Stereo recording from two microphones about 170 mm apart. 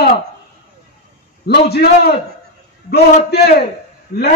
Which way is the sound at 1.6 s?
70° left (ahead or behind).